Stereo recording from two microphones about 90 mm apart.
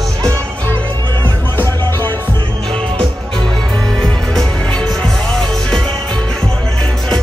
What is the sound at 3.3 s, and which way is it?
Music, 5° left (ahead or behind).